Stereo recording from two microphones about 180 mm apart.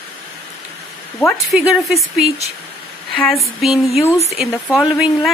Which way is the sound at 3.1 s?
5° left (ahead or behind).